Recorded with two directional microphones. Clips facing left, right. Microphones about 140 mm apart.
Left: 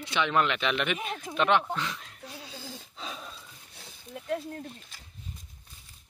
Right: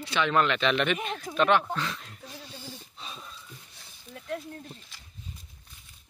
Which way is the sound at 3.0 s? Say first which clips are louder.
Left 4 dB; 90° left.